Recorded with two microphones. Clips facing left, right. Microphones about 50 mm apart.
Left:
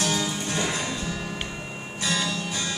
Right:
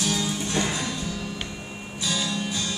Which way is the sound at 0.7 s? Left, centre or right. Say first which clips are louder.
Even; left.